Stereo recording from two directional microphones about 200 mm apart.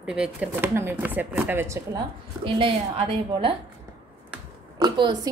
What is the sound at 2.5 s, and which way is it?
A woman's voice, 25° right (ahead or behind).